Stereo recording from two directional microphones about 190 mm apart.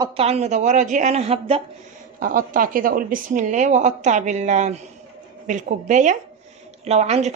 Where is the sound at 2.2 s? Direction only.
45° right (ahead or behind).